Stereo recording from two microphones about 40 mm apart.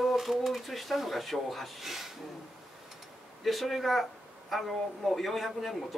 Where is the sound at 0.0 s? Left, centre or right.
Centre.